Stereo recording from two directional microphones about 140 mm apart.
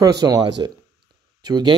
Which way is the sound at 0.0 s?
25° right (ahead or behind).